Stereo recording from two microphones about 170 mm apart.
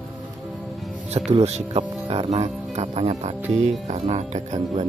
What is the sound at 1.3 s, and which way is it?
Speech, 40° right (ahead or behind).